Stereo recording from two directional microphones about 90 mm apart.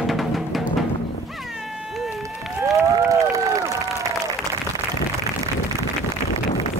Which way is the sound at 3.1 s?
40° right (ahead or behind).